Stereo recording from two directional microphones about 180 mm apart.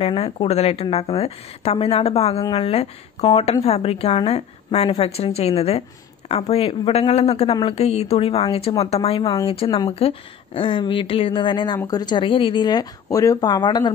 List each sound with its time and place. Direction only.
0.0 s a woman's voice: 35° left (ahead or behind)